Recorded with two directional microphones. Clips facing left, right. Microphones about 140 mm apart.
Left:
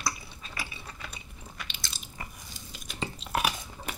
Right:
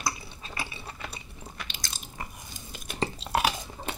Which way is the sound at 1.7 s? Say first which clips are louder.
Right 2 dB; 45° right (ahead or behind).